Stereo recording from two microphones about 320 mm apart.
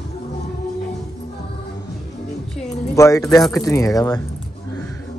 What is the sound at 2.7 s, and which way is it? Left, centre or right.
Speech, centre.